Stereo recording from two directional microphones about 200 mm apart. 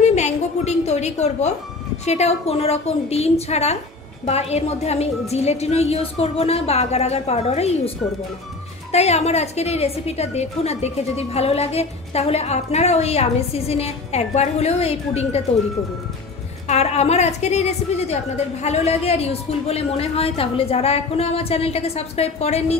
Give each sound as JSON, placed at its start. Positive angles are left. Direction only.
{"t": 0.0, "sound": "a sound", "side_deg": 35}
{"t": 2.0, "sound": "a woman's voice", "side_deg": 35}
{"t": 8.9, "sound": "a woman's voice", "side_deg": 30}
{"t": 16.6, "sound": "a woman's voice", "side_deg": 30}